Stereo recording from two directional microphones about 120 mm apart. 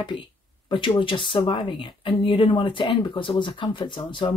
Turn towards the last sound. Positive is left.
turn(degrees=40)  # may be behind; listen again after turning